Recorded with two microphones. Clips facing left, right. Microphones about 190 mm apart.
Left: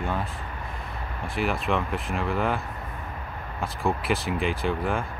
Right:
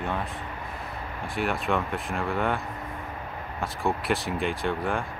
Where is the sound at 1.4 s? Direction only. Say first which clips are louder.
Left 1 dB; centre (ahead or behind).